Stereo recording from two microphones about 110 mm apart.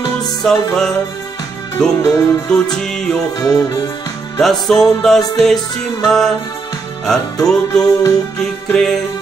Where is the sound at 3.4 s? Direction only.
35° left (ahead or behind).